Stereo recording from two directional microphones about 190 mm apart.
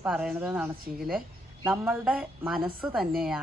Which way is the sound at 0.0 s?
5° right (ahead or behind).